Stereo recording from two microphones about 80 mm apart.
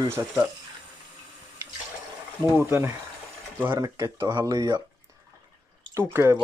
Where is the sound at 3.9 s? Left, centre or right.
Right.